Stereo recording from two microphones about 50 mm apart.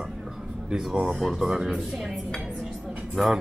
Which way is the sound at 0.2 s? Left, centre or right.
Centre.